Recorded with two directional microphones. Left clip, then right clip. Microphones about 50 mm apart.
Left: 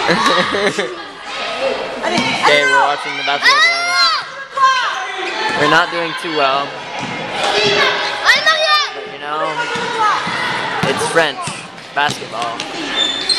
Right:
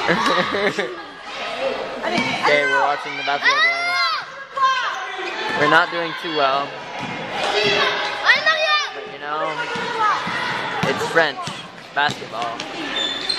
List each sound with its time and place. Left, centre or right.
0.0 s speech: centre
0.6 s speech: right
1.4 s a sound: centre
2.4 s speech: centre
4.6 s basketball bounce: centre
5.7 s speech: centre
7.3 s speech: centre
8.2 s a sound: centre
9.3 s basketball bounce: centre
10.9 s speech: centre